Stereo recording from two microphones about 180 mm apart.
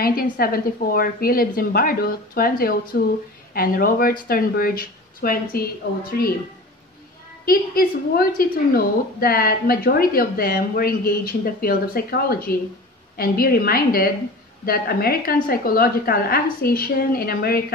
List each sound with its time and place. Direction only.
0.0 s a woman's voice: 55° left (ahead or behind)
2.9 s a woman's voice: 65° left (ahead or behind)
3.5 s speech: 50° left (ahead or behind)
7.4 s a woman's voice: 55° left (ahead or behind)